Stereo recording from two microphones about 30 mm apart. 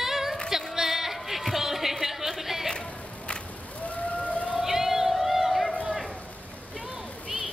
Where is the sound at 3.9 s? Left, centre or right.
Left.